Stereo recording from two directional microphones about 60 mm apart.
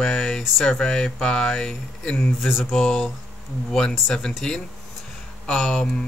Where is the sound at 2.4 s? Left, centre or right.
Centre.